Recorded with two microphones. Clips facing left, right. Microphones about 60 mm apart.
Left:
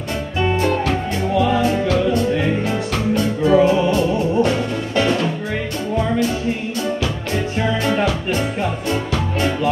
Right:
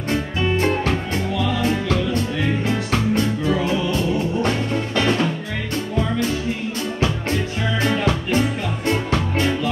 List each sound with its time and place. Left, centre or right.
3.4 s music: left